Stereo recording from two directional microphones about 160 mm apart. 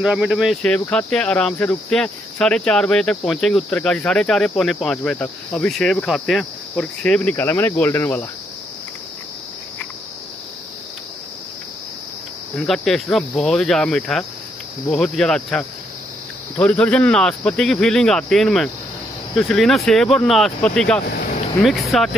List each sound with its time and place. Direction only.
0.0 s speech: 5° right (ahead or behind)
0.6 s speech: 10° left (ahead or behind)
12.5 s speech: 5° left (ahead or behind)